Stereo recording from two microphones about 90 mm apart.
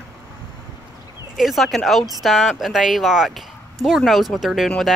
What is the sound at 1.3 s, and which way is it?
Speech, centre (ahead or behind).